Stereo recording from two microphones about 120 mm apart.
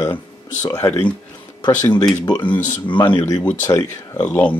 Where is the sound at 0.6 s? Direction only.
25° left (ahead or behind).